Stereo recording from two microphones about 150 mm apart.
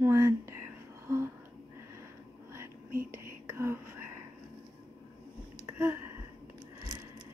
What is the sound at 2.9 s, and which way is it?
Whispering, 70° right (ahead or behind).